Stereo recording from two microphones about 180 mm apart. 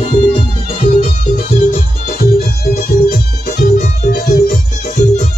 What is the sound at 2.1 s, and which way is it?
Music, 55° left (ahead or behind).